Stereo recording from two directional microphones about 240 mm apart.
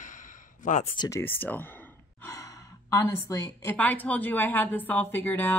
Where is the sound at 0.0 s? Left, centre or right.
Left.